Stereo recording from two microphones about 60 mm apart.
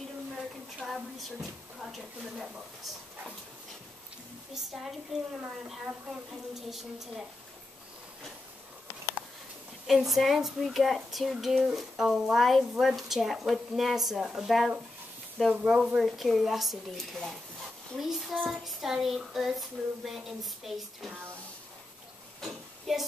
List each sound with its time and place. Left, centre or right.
0.8 s speech: centre
4.6 s speech: centre
9.8 s speech: centre
22.4 s a sound: centre